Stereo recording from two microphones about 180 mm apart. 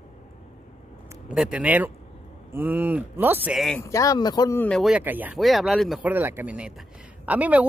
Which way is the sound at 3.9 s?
20° left (ahead or behind).